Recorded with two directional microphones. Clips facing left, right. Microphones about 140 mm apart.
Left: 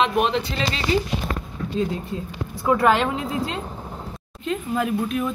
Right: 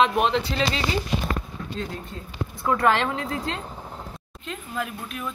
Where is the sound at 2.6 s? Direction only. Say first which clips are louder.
Left 3 dB; 10° left (ahead or behind).